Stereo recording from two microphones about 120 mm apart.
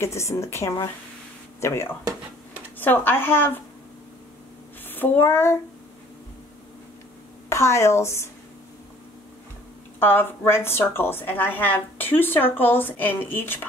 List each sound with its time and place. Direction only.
0.0 s a woman's voice: 25° left (ahead or behind)
4.8 s speech: 15° left (ahead or behind)
7.4 s a woman's voice: 25° left (ahead or behind)
9.9 s a woman's voice: 15° left (ahead or behind)